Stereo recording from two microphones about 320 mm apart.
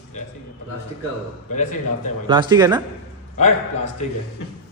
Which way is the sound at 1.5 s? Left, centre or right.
Left.